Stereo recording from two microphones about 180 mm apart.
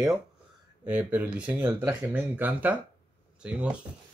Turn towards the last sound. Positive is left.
turn(degrees=-5)  # may be behind; listen again after turning